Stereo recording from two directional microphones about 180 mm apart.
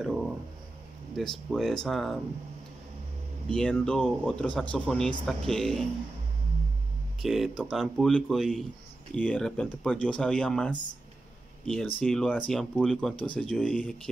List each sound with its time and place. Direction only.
0.0 s a sound: 5° right (ahead or behind)
1.1 s speech: centre (ahead or behind)
3.4 s speech: 5° left (ahead or behind)
7.2 s speech: centre (ahead or behind)